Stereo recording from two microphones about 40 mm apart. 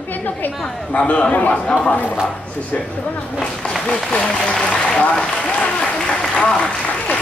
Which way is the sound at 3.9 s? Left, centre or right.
Left.